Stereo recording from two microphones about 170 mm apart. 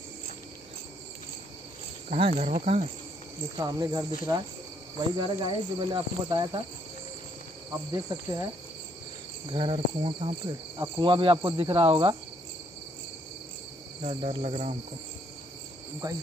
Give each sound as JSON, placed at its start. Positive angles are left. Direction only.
{"t": 2.0, "sound": "speech", "side_deg": -35}
{"t": 3.5, "sound": "speech", "side_deg": -20}
{"t": 7.9, "sound": "speech", "side_deg": -20}
{"t": 9.5, "sound": "speech", "side_deg": -30}
{"t": 14.0, "sound": "speech", "side_deg": -35}
{"t": 16.0, "sound": "speech", "side_deg": -20}